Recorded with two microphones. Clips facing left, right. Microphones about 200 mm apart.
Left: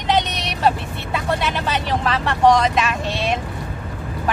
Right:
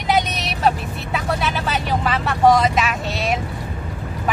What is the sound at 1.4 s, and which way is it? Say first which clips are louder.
A woman's voice: even; 5° right (ahead or behind).